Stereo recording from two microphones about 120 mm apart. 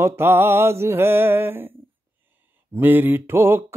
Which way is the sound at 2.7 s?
15° right (ahead or behind).